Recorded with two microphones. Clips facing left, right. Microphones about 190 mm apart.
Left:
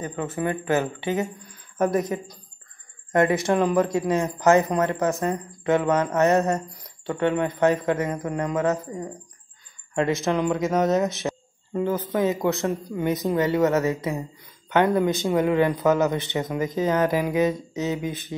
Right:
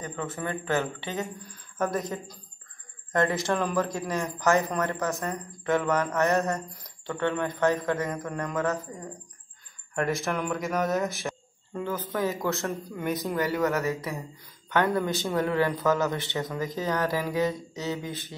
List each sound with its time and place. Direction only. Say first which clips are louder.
0.0 s speech: left 6 dB; 15° left (ahead or behind)
3.1 s a man's voice: left 5 dB; 20° left (ahead or behind)
9.9 s a man's voice: left 5 dB; 20° left (ahead or behind)